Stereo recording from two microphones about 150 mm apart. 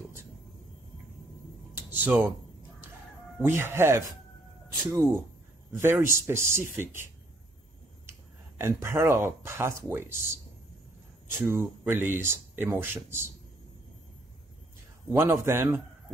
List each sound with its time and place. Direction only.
1.8 s speech: 10° right (ahead or behind)
3.4 s speech: 15° right (ahead or behind)
5.7 s speech: 15° right (ahead or behind)
8.1 s speech: 15° right (ahead or behind)
15.0 s speech: 15° right (ahead or behind)